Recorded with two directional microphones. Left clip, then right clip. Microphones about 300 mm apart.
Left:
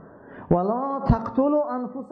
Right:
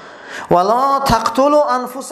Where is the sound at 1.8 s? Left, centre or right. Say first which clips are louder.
Right 9 dB; centre.